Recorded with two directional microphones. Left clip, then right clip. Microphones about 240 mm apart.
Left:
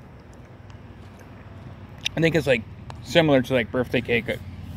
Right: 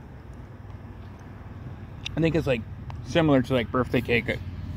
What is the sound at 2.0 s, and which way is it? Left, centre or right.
Speech, centre.